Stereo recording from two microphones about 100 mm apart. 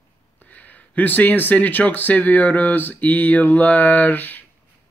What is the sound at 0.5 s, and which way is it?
Speech, 15° left (ahead or behind).